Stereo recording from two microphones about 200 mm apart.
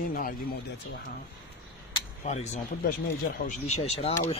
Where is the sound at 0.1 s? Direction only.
45° left (ahead or behind).